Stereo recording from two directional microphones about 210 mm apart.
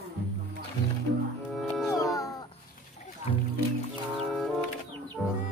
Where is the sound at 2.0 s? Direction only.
15° left (ahead or behind).